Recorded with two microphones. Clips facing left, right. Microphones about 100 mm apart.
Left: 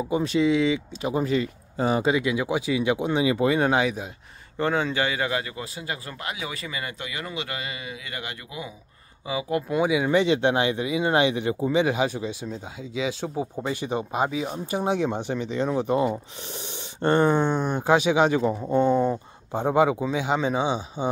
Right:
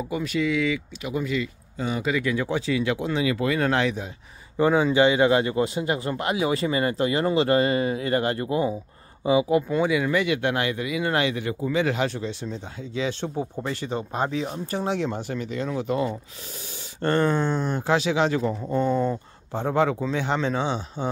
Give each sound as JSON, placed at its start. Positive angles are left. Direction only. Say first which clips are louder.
{"t": 0.1, "sound": "speech", "louder": "left 4 dB", "side_deg": 25}
{"t": 2.1, "sound": "speech", "louder": "left 1 dB", "side_deg": 15}
{"t": 4.6, "sound": "a man's voice", "louder": "right 5 dB", "side_deg": -10}
{"t": 9.2, "sound": "speech", "louder": "right 9 dB", "side_deg": -25}
{"t": 9.7, "sound": "speech", "louder": "even", "side_deg": 15}